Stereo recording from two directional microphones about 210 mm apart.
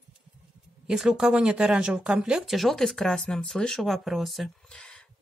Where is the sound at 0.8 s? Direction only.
5° right (ahead or behind).